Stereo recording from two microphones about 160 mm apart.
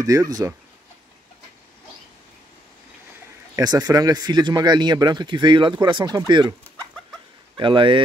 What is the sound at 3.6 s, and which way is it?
Speech, 25° right (ahead or behind).